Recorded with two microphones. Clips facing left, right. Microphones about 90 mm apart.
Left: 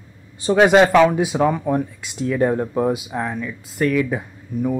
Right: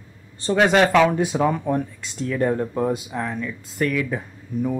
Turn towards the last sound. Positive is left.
turn(degrees=5)  # may be behind; listen again after turning